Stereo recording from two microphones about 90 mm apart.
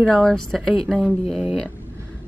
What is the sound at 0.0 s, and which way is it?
A woman's voice, 5° left (ahead or behind).